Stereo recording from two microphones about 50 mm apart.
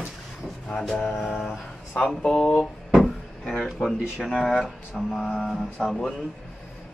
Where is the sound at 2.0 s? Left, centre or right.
Centre.